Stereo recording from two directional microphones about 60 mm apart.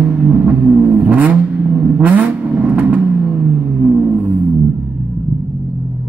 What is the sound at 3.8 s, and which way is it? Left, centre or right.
Music, right.